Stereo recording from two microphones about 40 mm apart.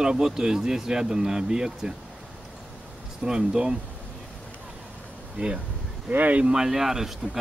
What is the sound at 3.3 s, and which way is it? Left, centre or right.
Speech, centre.